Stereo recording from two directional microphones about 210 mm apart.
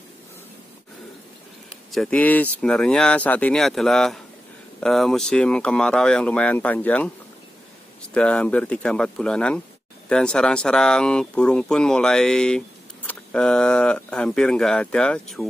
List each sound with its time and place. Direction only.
1.9 s speech: 5° left (ahead or behind)
8.1 s speech: 5° left (ahead or behind)